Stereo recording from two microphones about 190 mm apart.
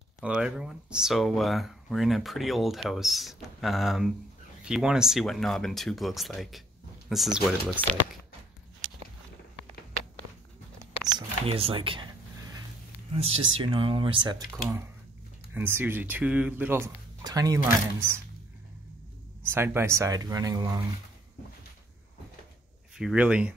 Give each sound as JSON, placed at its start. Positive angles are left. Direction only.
{"t": 0.2, "sound": "speech", "side_deg": -5}
{"t": 10.8, "sound": "camera", "side_deg": -25}
{"t": 13.1, "sound": "speech", "side_deg": -30}
{"t": 15.5, "sound": "speech", "side_deg": -10}
{"t": 19.4, "sound": "speech", "side_deg": -10}
{"t": 22.9, "sound": "speech", "side_deg": -5}